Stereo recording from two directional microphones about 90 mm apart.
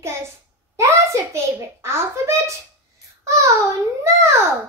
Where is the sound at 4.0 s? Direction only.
30° right (ahead or behind).